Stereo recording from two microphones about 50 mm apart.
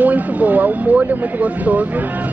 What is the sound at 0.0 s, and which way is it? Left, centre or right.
Speech, right.